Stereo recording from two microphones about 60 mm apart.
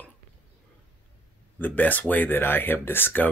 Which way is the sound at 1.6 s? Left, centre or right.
Left.